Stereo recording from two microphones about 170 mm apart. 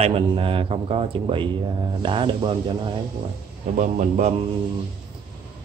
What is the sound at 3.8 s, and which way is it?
Speech, 45° right (ahead or behind).